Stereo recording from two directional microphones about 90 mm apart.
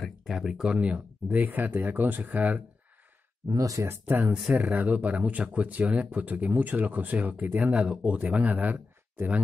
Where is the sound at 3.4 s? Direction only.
40° right (ahead or behind).